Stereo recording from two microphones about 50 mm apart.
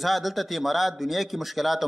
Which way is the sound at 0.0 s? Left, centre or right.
Centre.